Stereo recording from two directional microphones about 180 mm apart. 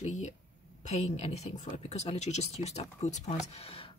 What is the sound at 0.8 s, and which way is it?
Speech, 35° left (ahead or behind).